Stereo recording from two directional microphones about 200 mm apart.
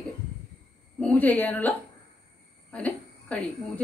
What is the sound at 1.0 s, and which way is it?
A woman's voice, 10° left (ahead or behind).